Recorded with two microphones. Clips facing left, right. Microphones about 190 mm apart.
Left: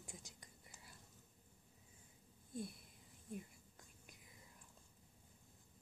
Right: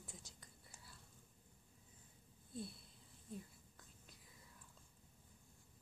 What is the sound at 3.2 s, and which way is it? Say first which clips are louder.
Whispering: left 2 dB; 15° left (ahead or behind).